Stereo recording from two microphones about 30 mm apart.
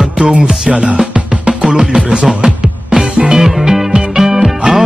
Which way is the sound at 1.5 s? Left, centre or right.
Right.